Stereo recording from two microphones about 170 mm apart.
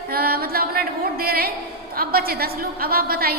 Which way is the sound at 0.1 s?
60° right (ahead or behind).